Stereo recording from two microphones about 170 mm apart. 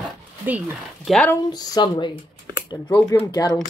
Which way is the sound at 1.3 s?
20° left (ahead or behind).